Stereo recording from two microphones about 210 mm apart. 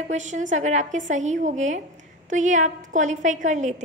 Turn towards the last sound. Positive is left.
turn(degrees=-35)  # may be behind; listen again after turning